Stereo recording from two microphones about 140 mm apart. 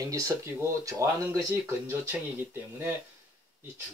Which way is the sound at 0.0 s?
25° right (ahead or behind).